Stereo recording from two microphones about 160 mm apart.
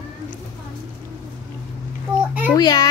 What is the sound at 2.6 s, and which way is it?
Speech, 25° left (ahead or behind).